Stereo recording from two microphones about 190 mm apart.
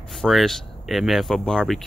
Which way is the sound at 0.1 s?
Centre (ahead or behind).